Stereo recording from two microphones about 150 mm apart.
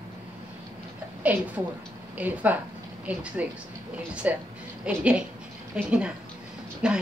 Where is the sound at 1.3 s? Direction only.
10° right (ahead or behind).